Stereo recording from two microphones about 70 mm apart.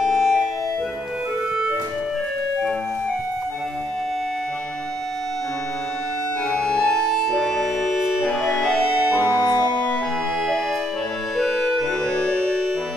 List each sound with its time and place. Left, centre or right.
0.0 s music: centre
6.5 s music: centre
9.2 s music: left
11.3 s music: centre